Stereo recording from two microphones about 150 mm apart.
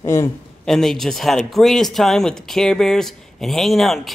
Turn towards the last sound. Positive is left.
turn(degrees=0)  # may be behind; listen again after turning